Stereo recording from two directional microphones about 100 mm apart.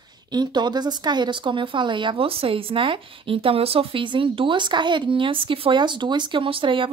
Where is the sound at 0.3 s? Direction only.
45° right (ahead or behind).